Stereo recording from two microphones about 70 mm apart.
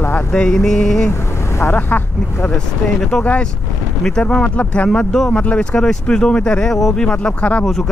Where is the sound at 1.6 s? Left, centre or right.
Left.